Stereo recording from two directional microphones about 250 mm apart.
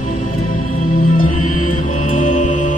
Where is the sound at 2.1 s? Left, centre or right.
Left.